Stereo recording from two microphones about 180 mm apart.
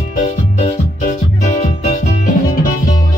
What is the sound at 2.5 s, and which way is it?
Music, 50° left (ahead or behind).